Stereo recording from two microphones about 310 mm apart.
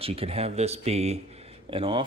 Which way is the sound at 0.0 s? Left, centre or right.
Centre.